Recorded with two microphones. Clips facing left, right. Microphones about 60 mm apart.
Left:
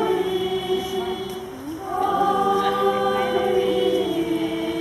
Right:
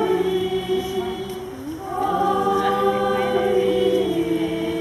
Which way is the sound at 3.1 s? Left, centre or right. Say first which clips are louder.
Right 1 dB; centre.